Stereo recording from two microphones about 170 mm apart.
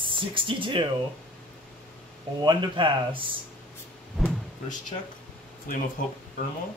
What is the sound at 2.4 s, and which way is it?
Speech, 25° right (ahead or behind).